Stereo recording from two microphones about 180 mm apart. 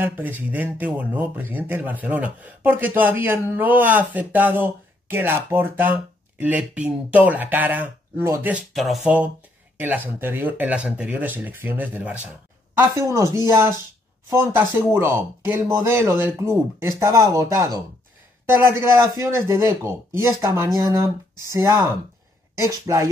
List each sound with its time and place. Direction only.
0.0 s speech: 10° right (ahead or behind)
14.3 s speech: 15° right (ahead or behind)